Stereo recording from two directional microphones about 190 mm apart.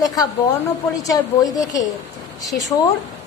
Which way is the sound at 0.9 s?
20° left (ahead or behind).